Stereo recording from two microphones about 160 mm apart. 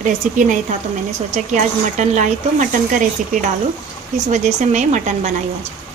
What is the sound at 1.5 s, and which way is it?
Speech, 50° right (ahead or behind).